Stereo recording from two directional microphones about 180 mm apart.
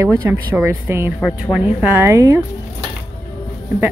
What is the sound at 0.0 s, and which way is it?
Speech, 15° right (ahead or behind).